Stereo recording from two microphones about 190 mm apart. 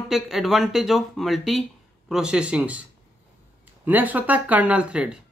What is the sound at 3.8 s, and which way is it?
Speech, 10° right (ahead or behind).